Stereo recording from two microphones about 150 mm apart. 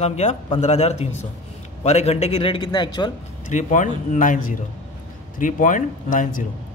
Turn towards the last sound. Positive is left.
turn(degrees=60)  # may be behind; listen again after turning